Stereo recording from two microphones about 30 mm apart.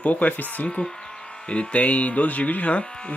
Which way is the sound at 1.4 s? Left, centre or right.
Left.